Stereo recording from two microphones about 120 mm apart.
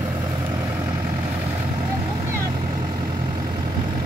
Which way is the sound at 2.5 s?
45° right (ahead or behind).